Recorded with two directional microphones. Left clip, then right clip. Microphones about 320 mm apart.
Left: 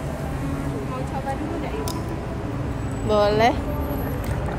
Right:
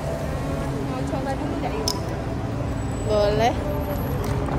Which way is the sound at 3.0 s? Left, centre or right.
Left.